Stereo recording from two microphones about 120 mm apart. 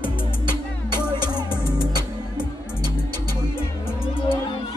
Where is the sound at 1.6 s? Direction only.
20° left (ahead or behind).